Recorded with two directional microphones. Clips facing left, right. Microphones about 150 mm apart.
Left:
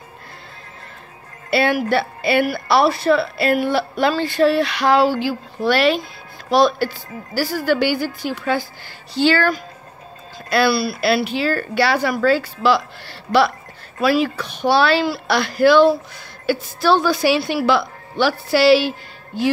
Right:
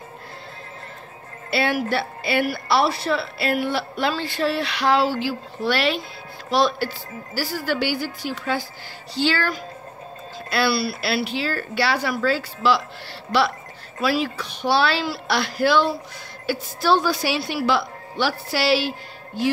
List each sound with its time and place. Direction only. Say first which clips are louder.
1.5 s a woman's voice: left 5 dB; 55° left (ahead or behind)